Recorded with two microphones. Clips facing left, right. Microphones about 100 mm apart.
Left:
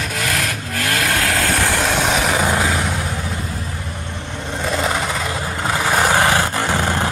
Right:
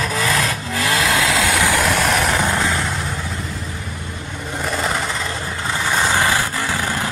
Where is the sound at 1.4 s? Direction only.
80° right.